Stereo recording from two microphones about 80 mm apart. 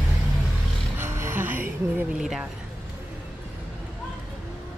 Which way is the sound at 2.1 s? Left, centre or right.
Centre.